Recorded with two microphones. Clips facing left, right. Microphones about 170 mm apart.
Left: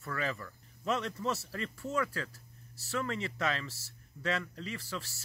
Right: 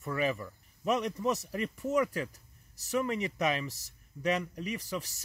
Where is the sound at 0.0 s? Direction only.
20° right (ahead or behind).